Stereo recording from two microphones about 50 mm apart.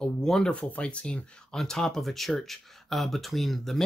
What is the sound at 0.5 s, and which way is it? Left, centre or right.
Speech, left.